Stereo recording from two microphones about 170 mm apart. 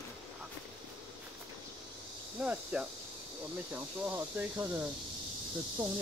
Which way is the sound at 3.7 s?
10° right (ahead or behind).